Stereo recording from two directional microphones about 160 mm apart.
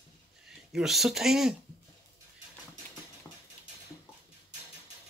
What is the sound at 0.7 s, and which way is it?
Speech, centre (ahead or behind).